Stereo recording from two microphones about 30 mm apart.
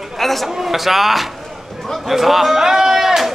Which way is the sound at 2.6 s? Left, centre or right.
Centre.